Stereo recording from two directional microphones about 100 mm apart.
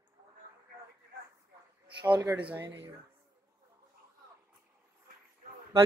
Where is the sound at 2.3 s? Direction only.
15° right (ahead or behind).